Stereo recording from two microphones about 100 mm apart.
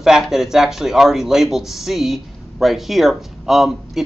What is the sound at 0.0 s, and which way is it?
Speech, 5° right (ahead or behind).